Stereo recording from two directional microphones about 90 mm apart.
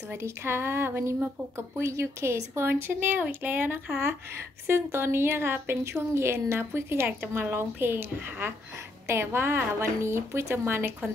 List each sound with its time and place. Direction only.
0.1 s a woman's voice: 25° right (ahead or behind)